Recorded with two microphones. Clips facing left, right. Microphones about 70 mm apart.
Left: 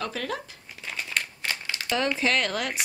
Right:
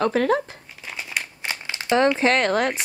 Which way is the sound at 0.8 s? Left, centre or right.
Centre.